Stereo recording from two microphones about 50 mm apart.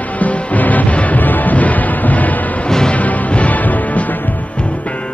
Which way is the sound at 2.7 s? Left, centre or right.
Centre.